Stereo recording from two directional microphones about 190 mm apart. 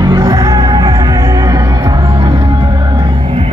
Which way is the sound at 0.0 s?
20° right (ahead or behind).